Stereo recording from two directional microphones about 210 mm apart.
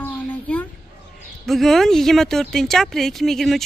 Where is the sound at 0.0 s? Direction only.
5° left (ahead or behind).